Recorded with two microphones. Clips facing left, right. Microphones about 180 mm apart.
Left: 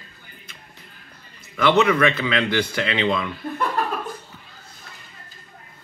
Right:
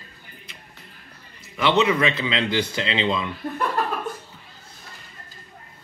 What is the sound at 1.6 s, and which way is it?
A man's voice, 20° right (ahead or behind).